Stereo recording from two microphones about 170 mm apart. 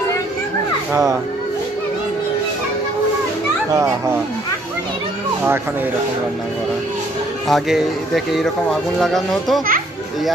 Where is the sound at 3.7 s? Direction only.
15° right (ahead or behind).